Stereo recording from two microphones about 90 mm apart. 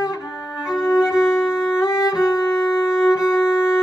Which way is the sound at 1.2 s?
30° left (ahead or behind).